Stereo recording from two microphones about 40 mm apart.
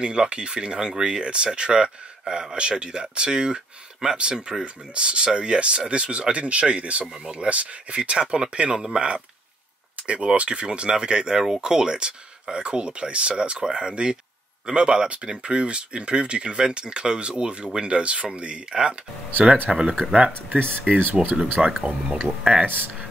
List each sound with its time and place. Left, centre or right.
0.0 s speech: right
10.0 s speech: right
21.0 s speech: right
21.8 s speech: right